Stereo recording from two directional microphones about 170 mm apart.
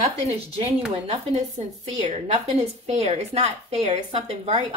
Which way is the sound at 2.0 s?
35° right (ahead or behind).